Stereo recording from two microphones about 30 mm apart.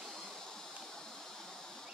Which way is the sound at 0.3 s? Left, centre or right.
Centre.